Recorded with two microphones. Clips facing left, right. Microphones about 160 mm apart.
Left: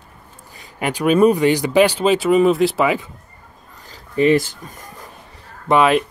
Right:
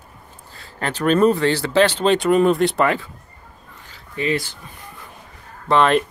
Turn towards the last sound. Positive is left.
turn(degrees=5)  # may be behind; listen again after turning